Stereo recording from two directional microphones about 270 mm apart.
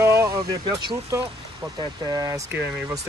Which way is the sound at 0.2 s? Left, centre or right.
Centre.